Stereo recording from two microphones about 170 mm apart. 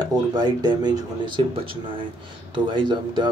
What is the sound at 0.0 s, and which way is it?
Speech, 25° right (ahead or behind).